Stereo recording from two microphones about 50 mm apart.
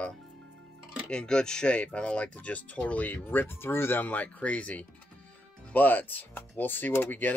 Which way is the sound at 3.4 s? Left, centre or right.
Left.